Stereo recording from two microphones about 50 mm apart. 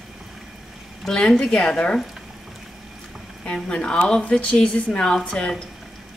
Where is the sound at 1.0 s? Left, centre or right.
Centre.